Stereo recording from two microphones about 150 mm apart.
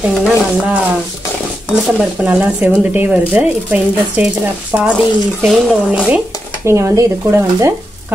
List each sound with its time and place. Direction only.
0.0 s speech: 5° right (ahead or behind)
2.1 s speech: 10° right (ahead or behind)
6.1 s speech: 15° right (ahead or behind)